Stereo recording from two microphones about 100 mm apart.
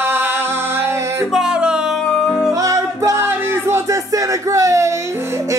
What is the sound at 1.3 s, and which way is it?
Music, 5° right (ahead or behind).